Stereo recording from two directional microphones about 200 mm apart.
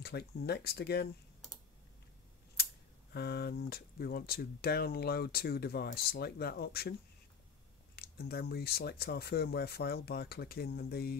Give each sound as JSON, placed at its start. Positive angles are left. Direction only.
{"t": 0.0, "sound": "speech", "side_deg": 55}
{"t": 2.5, "sound": "speech", "side_deg": 55}